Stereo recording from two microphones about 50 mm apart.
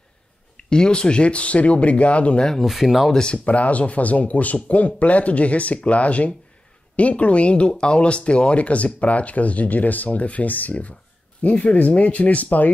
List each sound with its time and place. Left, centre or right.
0.6 s speech: centre
2.6 s speech: centre
3.4 s speech: left